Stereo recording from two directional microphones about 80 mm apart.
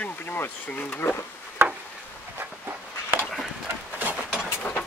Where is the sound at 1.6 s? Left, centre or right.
Right.